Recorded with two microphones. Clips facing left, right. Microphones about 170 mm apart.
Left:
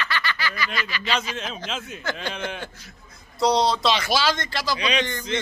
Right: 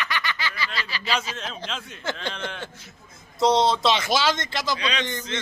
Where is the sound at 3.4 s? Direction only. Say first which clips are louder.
Right 1 dB; 25° right (ahead or behind).